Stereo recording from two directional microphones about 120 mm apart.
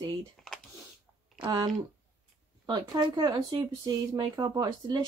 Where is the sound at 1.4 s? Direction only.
35° right (ahead or behind).